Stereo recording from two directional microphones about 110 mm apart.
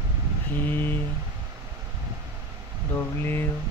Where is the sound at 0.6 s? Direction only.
15° left (ahead or behind).